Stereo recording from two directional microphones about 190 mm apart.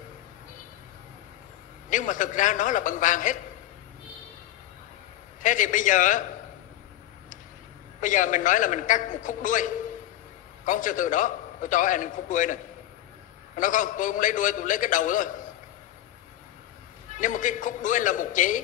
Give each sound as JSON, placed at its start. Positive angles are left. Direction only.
{"t": 1.9, "sound": "a man's voice", "side_deg": 40}
{"t": 5.4, "sound": "a man's voice", "side_deg": 40}
{"t": 8.0, "sound": "a man's voice", "side_deg": 40}
{"t": 13.6, "sound": "a man's voice", "side_deg": 40}
{"t": 17.1, "sound": "a man's voice", "side_deg": 40}